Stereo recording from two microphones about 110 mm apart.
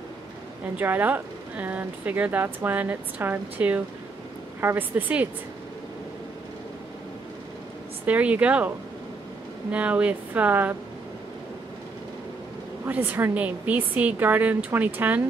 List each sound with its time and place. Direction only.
0.7 s speech: 15° right (ahead or behind)
8.0 s speech: 15° right (ahead or behind)
12.8 s speech: 15° right (ahead or behind)